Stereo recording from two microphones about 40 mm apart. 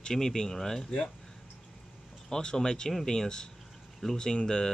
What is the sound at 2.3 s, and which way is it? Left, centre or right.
Speech, centre.